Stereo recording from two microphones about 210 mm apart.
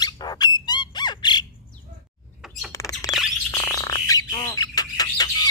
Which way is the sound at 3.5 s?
15° left (ahead or behind).